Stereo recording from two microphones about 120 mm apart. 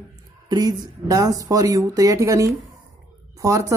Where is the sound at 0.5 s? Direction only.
30° right (ahead or behind).